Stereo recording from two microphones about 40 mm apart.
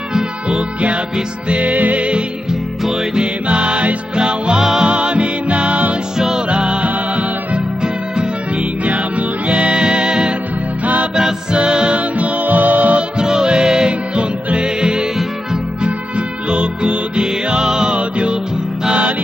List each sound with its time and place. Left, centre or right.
1.5 s music: right
3.2 s music: right
4.6 s music: centre
4.8 s music: right
6.1 s music: centre
6.5 s music: right
9.5 s music: right
11.5 s music: right
12.2 s music: right
13.2 s music: centre
16.4 s music: right
17.9 s music: right